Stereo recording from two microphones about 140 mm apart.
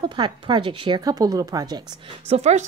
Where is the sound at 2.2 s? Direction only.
50° right (ahead or behind).